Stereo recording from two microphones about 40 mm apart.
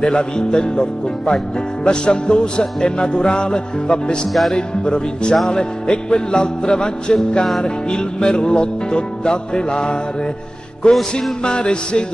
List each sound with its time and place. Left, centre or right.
0.0 s music: left